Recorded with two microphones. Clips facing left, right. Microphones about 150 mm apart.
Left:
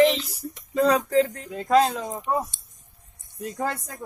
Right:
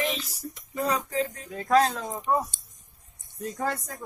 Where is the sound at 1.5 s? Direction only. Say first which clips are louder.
Left 2 dB; 20° left (ahead or behind).